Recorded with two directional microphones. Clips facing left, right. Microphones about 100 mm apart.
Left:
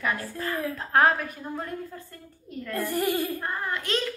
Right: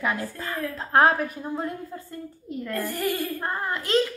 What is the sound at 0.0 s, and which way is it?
A woman's voice, 25° right (ahead or behind).